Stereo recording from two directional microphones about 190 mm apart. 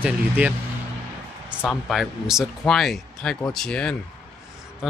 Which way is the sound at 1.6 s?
Centre (ahead or behind).